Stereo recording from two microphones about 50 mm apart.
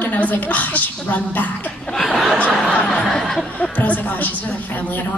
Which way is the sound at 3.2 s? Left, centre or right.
Centre.